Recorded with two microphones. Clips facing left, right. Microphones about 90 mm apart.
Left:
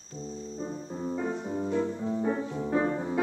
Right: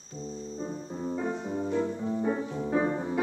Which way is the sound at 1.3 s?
15° right (ahead or behind).